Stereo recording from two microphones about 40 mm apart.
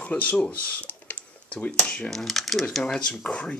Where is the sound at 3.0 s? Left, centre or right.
Left.